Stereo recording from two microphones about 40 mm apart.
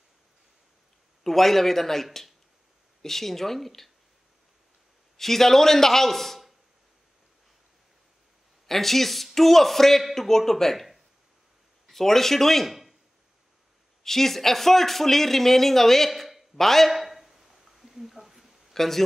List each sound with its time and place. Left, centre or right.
1.2 s speech: centre
5.1 s speech: centre
8.6 s a man's voice: centre
11.9 s speech: centre
14.0 s speech: centre
16.1 s a sound: centre
16.5 s a man's voice: centre
16.9 s a sound: centre